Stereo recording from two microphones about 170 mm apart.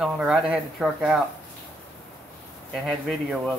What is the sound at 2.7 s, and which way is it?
Speech, centre (ahead or behind).